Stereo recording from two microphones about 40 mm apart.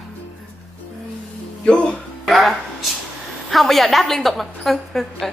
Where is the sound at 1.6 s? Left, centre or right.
Left.